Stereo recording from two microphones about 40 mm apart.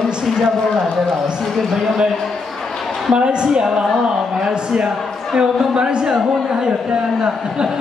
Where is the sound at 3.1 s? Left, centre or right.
Right.